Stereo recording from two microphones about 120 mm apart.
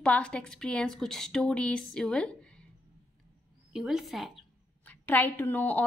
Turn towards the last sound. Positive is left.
turn(degrees=15)  # may be behind; listen again after turning